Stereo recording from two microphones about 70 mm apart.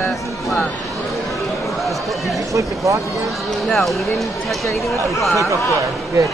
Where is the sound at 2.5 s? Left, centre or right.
Right.